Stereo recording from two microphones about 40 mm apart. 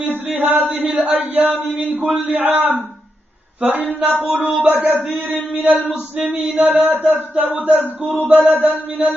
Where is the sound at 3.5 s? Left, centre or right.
Right.